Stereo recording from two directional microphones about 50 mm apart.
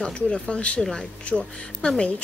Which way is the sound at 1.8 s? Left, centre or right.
Centre.